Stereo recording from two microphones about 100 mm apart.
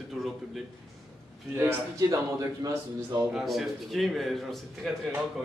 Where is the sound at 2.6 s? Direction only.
35° right (ahead or behind).